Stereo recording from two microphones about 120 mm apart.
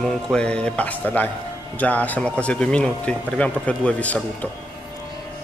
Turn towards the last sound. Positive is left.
turn(degrees=10)  # may be behind; listen again after turning